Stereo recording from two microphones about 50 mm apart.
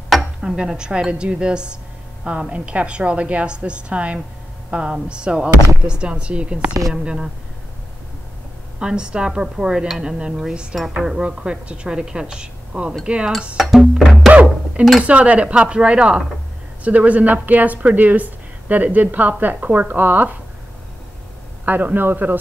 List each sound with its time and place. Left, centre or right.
0.1 s dishes: centre
0.6 s a woman's voice: centre
8.7 s a woman's voice: centre
11.2 s speech: right
13.6 s speech: centre
14.3 s music: right
15.0 s a woman's voice: right
21.6 s a woman's voice: right